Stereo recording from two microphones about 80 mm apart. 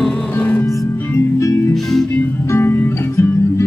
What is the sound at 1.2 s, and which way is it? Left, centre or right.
Music, left.